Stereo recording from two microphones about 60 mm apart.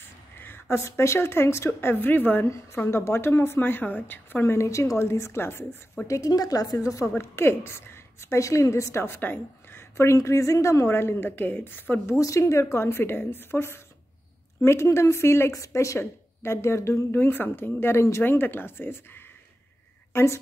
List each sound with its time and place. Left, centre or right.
0.4 s a sound: left
0.7 s a woman's voice: left
2.4 s a woman's voice: left
6.0 s a woman's voice: left
7.2 s a woman's voice: left
9.0 s a woman's voice: left
10.1 s a woman's voice: left
12.2 s a woman's voice: left
15.5 s a woman's voice: left
17.1 s speech: left
20.1 s a sound: left